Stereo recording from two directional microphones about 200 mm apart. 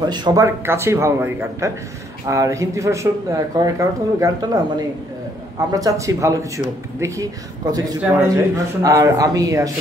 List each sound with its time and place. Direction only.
0.0 s a man's voice: 20° right (ahead or behind)